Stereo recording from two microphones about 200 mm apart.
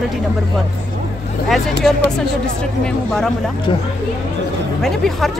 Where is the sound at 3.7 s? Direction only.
25° left (ahead or behind).